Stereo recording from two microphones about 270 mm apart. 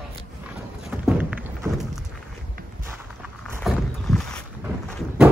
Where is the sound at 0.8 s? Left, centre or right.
Centre.